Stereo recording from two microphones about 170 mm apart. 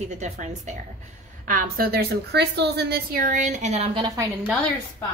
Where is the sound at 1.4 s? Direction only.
55° right (ahead or behind); by 4.0 s 40° right (ahead or behind).